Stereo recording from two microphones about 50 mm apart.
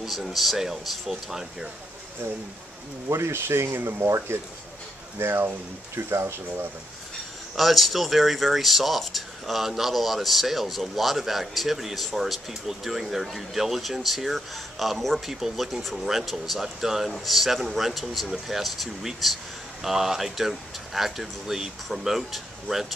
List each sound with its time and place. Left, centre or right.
0.0 s speech: centre
3.1 s speech: right
7.5 s speech: centre